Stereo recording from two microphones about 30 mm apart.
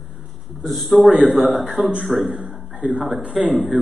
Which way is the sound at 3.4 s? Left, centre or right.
Centre.